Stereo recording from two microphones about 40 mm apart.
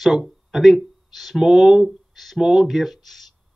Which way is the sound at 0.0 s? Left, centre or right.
Centre.